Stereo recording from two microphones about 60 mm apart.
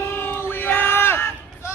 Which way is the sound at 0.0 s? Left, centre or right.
Left.